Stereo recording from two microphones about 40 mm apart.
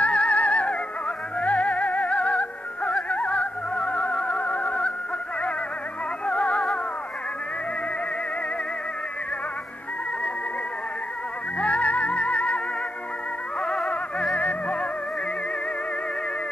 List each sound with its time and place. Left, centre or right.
0.0 s music: left
6.2 s music: left
11.5 s music: left
14.3 s music: left